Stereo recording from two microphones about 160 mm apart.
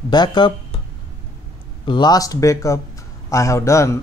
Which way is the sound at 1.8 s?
30° left (ahead or behind).